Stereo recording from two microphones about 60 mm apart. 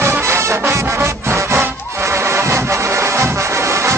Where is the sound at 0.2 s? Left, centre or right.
Right.